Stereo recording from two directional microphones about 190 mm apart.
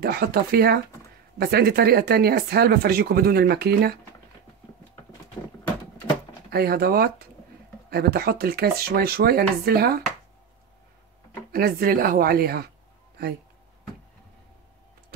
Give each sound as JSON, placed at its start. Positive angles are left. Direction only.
{"t": 0.0, "sound": "speech", "side_deg": -55}
{"t": 6.5, "sound": "speech", "side_deg": -55}
{"t": 11.5, "sound": "speech", "side_deg": -50}